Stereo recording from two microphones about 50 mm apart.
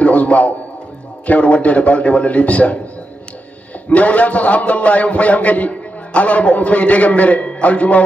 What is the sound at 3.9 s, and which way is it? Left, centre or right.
A man's voice, left.